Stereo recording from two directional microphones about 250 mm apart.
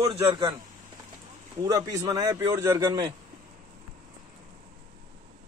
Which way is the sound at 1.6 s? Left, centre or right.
Centre.